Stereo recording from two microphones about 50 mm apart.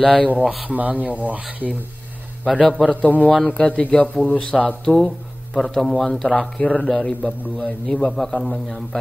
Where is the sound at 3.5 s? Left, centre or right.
Left.